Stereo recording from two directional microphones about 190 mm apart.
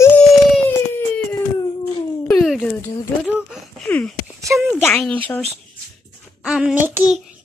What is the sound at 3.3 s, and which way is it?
Speech, 5° right (ahead or behind).